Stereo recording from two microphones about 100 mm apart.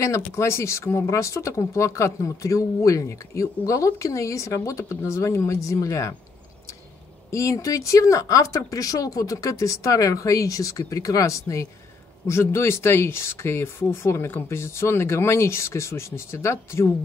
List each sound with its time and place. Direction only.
0.0 s speech: 30° left (ahead or behind)
7.2 s speech: 30° left (ahead or behind)